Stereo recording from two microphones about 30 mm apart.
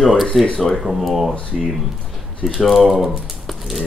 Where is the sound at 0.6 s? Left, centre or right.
Centre.